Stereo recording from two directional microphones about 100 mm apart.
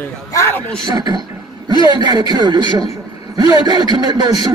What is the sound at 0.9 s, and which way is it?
A man's voice, 45° right (ahead or behind).